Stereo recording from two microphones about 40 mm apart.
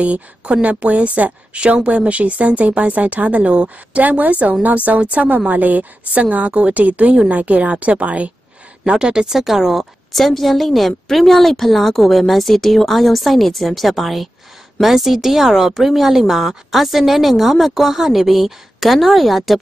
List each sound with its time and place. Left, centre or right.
0.0 s a woman's voice: right
8.8 s a woman's voice: right
9.4 s a woman's voice: centre
10.1 s a woman's voice: centre